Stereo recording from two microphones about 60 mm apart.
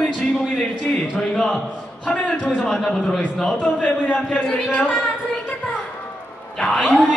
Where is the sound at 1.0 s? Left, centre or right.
Centre.